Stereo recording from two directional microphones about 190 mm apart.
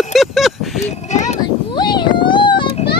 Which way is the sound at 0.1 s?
Centre (ahead or behind).